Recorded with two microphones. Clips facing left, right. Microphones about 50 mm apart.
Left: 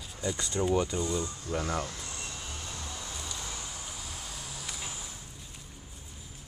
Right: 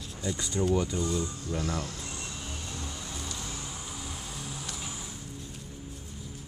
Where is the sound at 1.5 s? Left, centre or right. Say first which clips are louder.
Left 1 dB; left.